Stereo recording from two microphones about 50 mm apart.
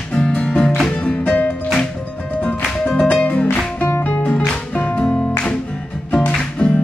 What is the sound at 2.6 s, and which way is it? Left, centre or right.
Music, left.